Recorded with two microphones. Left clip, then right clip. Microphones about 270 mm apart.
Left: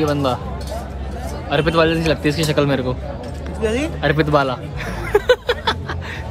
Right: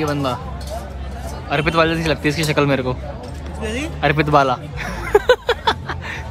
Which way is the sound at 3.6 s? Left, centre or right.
Centre.